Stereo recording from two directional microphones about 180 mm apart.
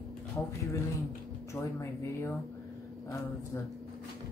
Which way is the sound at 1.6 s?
15° left (ahead or behind).